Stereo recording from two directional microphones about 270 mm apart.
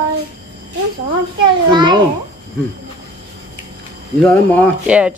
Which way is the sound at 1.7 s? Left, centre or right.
Centre.